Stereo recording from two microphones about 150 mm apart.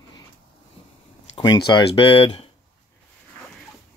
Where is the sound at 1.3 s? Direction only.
25° left (ahead or behind).